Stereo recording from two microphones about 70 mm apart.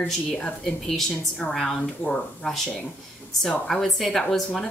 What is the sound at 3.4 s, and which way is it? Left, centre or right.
A woman's voice, centre.